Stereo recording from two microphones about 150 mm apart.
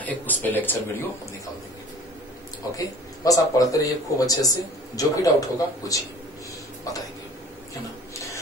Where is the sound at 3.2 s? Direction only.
25° left (ahead or behind).